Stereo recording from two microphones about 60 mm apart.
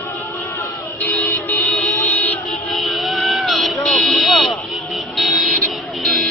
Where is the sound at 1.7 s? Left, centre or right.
Left.